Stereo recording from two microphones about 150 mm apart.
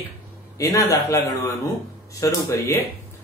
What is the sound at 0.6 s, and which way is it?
Speech, 25° left (ahead or behind).